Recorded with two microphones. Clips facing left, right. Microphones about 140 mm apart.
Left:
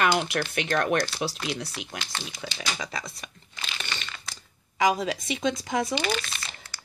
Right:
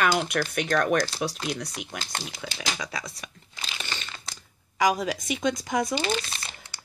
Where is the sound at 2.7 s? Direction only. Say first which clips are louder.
Even; centre (ahead or behind).